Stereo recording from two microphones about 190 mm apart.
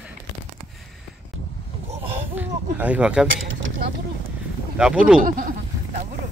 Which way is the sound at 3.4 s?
80° right.